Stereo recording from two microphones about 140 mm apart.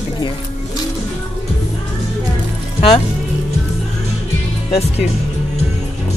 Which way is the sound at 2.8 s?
45° left (ahead or behind).